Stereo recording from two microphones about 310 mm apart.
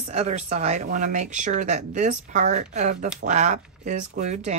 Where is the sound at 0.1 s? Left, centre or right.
Right.